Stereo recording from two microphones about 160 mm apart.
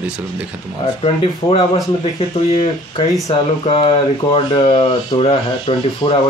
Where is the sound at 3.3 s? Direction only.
35° left (ahead or behind).